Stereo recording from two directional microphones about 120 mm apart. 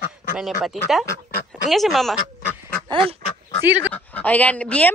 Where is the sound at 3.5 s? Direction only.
30° left (ahead or behind).